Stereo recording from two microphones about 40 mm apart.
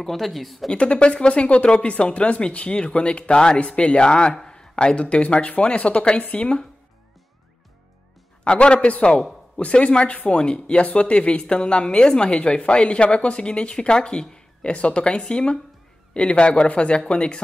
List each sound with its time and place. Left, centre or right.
0.0 s speech: centre
0.7 s speech: left
8.5 s a man's voice: left
14.6 s speech: left